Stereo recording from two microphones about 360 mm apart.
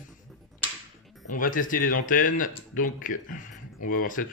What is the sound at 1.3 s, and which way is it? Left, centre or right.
Speech, left.